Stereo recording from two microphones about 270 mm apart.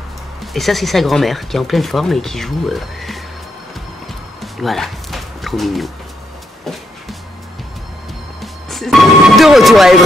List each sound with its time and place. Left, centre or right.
0.4 s speech: centre
4.4 s music: centre
8.4 s music: centre